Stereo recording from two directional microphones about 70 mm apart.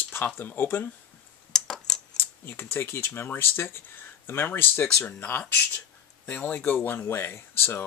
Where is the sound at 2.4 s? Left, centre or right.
Left.